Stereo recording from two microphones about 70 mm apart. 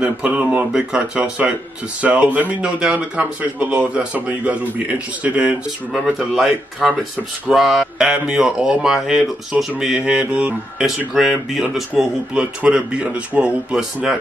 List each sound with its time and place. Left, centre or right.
0.0 s speech: centre
6.1 s a man's voice: centre
11.1 s a man's voice: centre
12.0 s speech: centre